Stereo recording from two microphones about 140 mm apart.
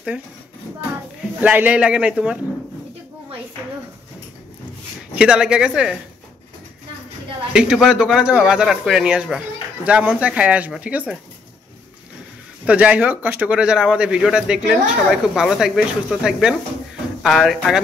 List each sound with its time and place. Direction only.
1.4 s speech: 10° right (ahead or behind)
5.1 s speech: 5° right (ahead or behind)
7.5 s speech: 5° right (ahead or behind)
12.6 s speech: 10° right (ahead or behind)